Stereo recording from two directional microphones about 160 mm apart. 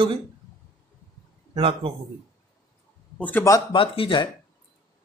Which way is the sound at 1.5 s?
35° right (ahead or behind).